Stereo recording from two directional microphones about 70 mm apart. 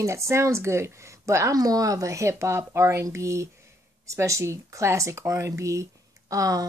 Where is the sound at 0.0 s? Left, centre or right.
Right.